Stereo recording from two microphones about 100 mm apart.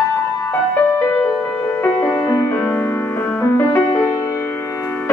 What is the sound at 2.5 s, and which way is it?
Music, 25° left (ahead or behind).